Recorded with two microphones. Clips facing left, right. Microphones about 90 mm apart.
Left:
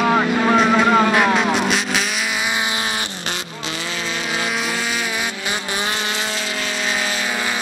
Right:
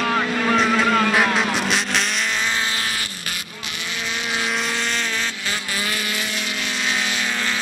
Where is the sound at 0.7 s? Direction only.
20° left (ahead or behind).